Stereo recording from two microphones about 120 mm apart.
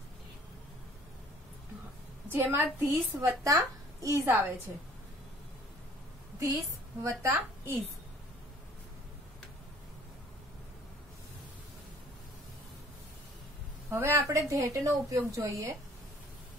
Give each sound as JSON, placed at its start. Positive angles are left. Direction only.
{"t": 2.2, "sound": "a woman's voice", "side_deg": -20}
{"t": 6.4, "sound": "a woman's voice", "side_deg": -25}
{"t": 13.8, "sound": "a woman's voice", "side_deg": -20}